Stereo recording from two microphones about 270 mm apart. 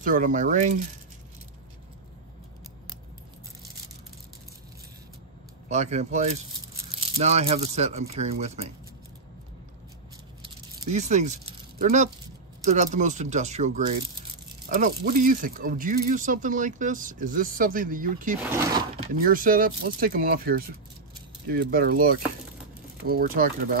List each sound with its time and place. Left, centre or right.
0.0 s speech: right
5.7 s speech: right
10.9 s speech: right
18.4 s speech: centre
19.1 s speech: right